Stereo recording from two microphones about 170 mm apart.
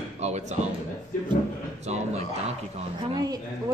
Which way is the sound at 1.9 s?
40° right (ahead or behind).